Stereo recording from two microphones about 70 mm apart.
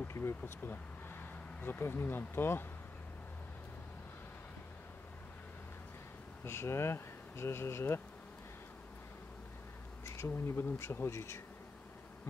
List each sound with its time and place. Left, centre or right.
0.1 s speech: left
1.6 s speech: left
6.4 s speech: left
10.0 s speech: left